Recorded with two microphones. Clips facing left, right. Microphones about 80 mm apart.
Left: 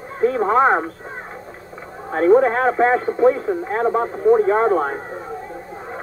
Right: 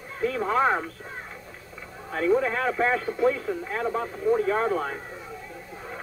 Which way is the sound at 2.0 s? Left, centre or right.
Left.